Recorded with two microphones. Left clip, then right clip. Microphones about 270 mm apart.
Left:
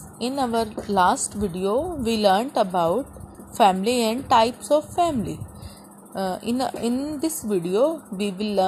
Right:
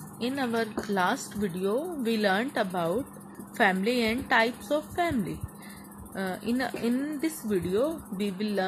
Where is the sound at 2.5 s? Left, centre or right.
Centre.